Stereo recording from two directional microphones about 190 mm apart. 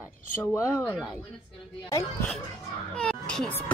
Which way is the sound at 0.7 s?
15° left (ahead or behind).